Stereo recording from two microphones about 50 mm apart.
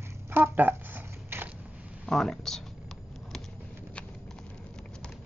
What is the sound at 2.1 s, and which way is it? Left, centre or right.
Speech, centre.